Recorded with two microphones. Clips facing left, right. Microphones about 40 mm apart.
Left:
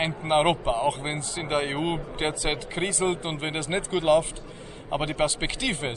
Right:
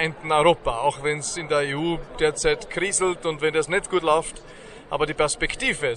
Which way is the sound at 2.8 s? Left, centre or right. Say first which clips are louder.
Right 3 dB; right.